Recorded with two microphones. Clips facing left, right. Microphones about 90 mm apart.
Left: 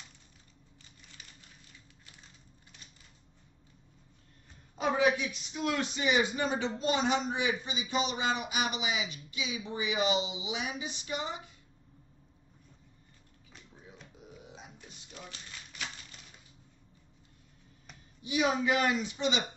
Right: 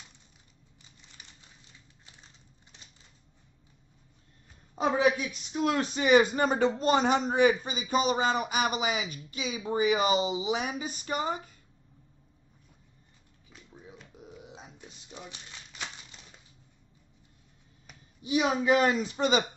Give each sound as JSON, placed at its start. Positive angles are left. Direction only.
{"t": 4.7, "sound": "speech", "side_deg": -35}
{"t": 14.8, "sound": "a sound", "side_deg": -20}
{"t": 18.2, "sound": "a man's voice", "side_deg": -35}